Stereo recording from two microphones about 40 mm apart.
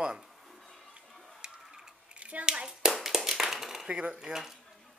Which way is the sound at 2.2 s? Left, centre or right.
Right.